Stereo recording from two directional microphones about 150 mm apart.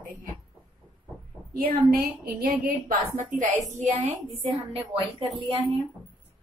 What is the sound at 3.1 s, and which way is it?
Speech, 55° right (ahead or behind).